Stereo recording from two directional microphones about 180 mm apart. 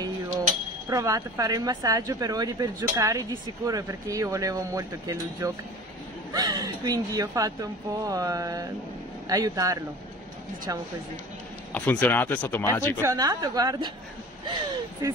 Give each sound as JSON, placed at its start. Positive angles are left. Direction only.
{"t": 0.8, "sound": "speech", "side_deg": -20}
{"t": 11.7, "sound": "speech", "side_deg": 10}
{"t": 13.0, "sound": "speech", "side_deg": -20}
{"t": 15.0, "sound": "speech", "side_deg": -15}